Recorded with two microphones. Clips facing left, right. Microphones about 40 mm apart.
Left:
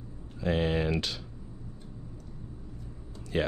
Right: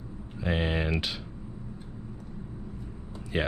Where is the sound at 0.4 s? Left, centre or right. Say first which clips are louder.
Left 1 dB; centre.